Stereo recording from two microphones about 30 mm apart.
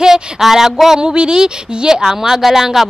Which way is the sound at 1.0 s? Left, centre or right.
Right.